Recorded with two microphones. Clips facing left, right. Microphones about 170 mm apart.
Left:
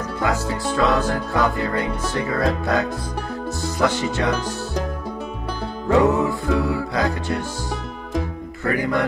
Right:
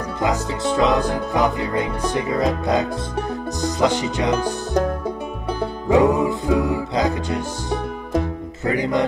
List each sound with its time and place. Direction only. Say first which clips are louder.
0.2 s music: right 2 dB; 20° right (ahead or behind)
5.9 s music: right 1 dB; 15° right (ahead or behind)
8.6 s speech: right 1 dB; 20° right (ahead or behind)